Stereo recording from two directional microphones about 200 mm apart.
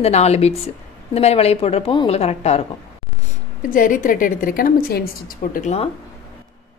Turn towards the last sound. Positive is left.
turn(degrees=45)  # may be behind; listen again after turning